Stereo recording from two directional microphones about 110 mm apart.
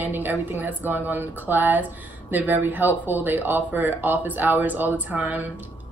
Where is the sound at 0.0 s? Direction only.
15° right (ahead or behind).